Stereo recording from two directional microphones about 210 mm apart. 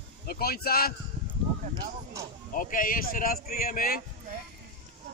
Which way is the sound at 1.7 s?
15° right (ahead or behind).